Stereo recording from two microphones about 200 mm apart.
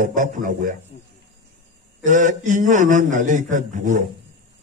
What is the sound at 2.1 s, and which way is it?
A man's voice, 40° right (ahead or behind).